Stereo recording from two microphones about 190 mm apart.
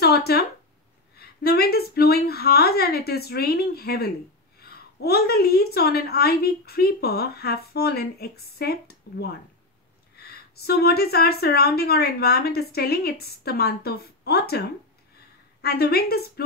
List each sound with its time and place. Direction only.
0.0 s a woman's voice: 55° left (ahead or behind)